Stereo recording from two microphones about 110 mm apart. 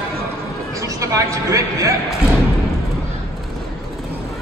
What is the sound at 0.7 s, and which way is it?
A man's voice, 30° right (ahead or behind).